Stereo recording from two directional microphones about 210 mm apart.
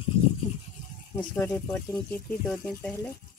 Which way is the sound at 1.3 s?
5° left (ahead or behind).